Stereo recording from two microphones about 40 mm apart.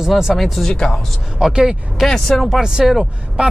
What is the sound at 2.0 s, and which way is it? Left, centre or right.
Speech, centre.